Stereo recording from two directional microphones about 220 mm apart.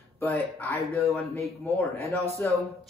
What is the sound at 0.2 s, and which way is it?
A woman's voice, 10° left (ahead or behind).